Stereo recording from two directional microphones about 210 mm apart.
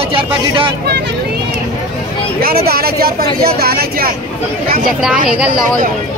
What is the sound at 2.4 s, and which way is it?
Speech, 45° right (ahead or behind).